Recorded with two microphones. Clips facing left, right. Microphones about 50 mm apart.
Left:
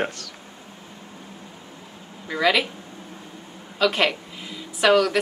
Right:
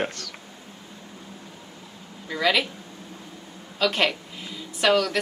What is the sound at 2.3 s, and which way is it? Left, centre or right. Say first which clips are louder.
Speech: left 2 dB; centre.